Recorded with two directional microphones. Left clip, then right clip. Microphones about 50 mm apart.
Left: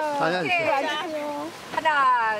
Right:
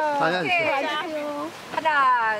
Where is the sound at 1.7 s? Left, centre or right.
Centre.